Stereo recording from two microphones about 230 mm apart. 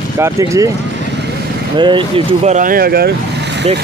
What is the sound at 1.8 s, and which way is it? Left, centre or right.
Speech, right.